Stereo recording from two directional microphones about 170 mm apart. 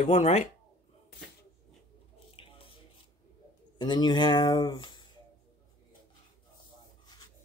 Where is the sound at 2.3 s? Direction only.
30° left (ahead or behind).